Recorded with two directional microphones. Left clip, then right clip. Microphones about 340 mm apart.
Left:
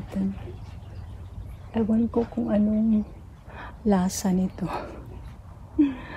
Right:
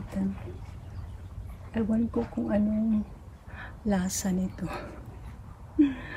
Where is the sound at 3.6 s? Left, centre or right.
Centre.